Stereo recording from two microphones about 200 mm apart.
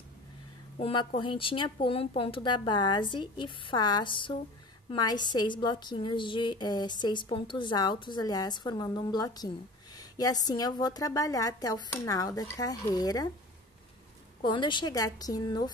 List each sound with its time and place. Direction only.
0.7 s a woman's voice: 30° left (ahead or behind)
14.4 s a woman's voice: 25° left (ahead or behind)